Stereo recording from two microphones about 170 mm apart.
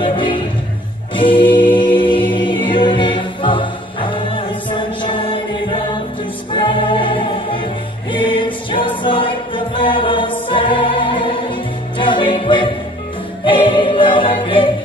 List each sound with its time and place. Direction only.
0.0 s music: 30° left (ahead or behind)
1.1 s choir: 30° left (ahead or behind)
6.5 s music: 30° left (ahead or behind)
13.4 s a capella: 30° left (ahead or behind)